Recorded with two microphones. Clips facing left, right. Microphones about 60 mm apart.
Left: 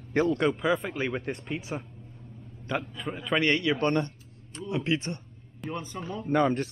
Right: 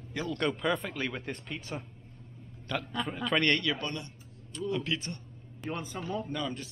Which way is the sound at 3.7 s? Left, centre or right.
Left.